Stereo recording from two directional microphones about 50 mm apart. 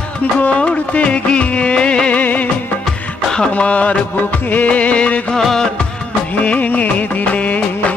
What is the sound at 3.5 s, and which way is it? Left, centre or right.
Music, left.